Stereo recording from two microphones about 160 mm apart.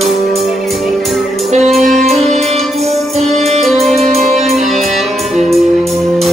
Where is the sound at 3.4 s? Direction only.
40° right (ahead or behind).